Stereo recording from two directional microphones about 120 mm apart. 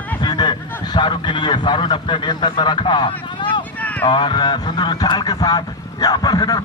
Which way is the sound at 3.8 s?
15° left (ahead or behind).